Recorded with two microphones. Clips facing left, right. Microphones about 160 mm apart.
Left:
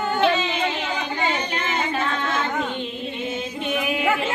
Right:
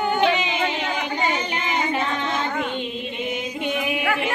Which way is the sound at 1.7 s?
15° right (ahead or behind).